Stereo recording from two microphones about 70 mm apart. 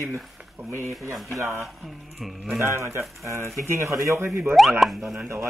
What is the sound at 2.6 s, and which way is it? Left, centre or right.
Speech, right.